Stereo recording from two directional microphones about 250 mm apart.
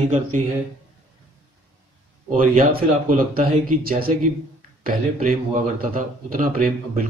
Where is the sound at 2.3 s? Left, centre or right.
Right.